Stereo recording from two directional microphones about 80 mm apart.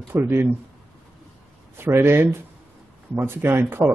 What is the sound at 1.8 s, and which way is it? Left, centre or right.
Speech, right.